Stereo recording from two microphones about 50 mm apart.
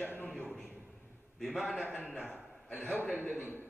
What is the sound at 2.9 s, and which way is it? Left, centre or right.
Speech, left.